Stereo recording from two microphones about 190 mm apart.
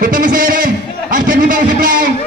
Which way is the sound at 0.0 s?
45° right (ahead or behind).